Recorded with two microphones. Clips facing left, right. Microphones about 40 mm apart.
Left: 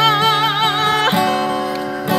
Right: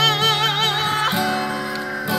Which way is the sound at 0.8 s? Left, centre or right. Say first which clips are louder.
Left 5 dB; left.